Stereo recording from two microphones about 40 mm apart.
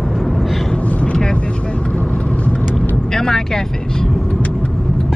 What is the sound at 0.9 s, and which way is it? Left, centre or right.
Vehicle, left.